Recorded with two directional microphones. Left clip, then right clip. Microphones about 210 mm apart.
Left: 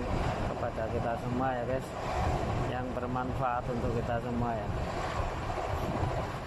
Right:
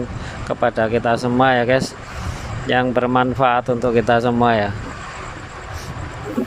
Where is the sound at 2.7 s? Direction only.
35° right (ahead or behind).